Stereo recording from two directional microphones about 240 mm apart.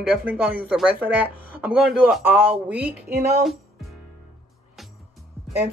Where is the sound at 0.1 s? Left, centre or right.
Centre.